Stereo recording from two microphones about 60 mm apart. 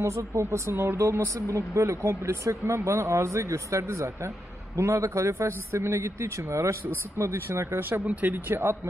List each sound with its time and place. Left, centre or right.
0.0 s speech: right
8.1 s speech: right